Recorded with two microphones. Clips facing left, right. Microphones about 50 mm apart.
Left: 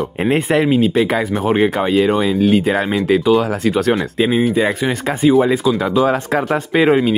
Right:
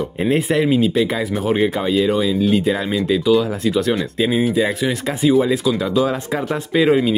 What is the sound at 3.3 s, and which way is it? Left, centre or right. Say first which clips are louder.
Speech: left 2 dB; left.